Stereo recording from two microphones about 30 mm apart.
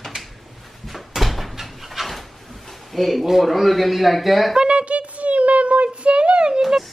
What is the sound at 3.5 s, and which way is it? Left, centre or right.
A woman's voice, centre.